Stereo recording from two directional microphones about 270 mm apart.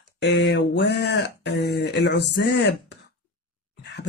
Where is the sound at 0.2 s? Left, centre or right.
Left.